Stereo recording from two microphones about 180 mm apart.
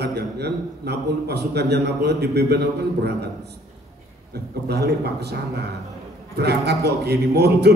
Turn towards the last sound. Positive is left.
turn(degrees=-65)  # may be behind; listen again after turning